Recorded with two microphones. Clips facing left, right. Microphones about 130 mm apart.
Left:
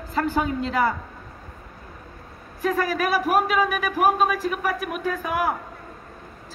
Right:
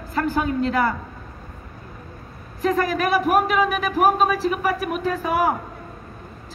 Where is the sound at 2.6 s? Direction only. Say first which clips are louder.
Right 2 dB; 5° left (ahead or behind).